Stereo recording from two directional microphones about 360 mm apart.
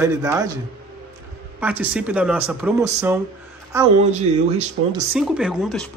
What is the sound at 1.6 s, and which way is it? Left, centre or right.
Speech, centre.